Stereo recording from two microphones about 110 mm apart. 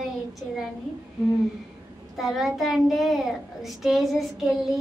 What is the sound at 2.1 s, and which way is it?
Child singing, centre (ahead or behind).